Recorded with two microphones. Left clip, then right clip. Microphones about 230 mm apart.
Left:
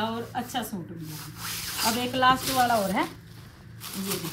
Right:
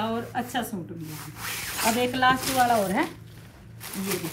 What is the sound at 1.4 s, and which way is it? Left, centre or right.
Speech, centre.